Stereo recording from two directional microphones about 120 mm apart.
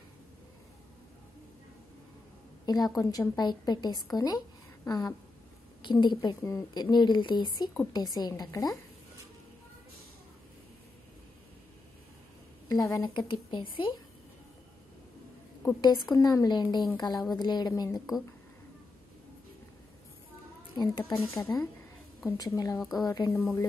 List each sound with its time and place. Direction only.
2.6 s a woman's voice: 35° left (ahead or behind)
12.6 s a woman's voice: 30° left (ahead or behind)
13.3 s speech: 45° left (ahead or behind)
16.2 s a woman's voice: 30° left (ahead or behind)
20.7 s speech: 40° left (ahead or behind)
21.0 s a woman's voice: 25° left (ahead or behind)
22.8 s a woman's voice: centre (ahead or behind)
23.0 s a woman's voice: 35° left (ahead or behind)
23.3 s speech: 15° left (ahead or behind)